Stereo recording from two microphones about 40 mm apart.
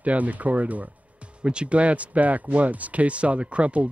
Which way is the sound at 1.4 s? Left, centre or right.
Right.